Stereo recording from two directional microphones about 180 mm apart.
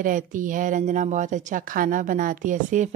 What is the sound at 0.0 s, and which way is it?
A woman's voice, 45° right (ahead or behind).